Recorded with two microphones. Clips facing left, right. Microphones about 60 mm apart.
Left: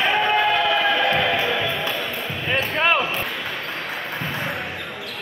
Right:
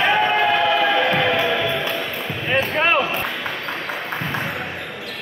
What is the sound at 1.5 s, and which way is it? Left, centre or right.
Music, centre.